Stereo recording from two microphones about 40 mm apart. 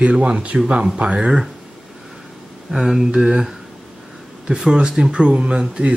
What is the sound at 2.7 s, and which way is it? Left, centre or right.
Speech, centre.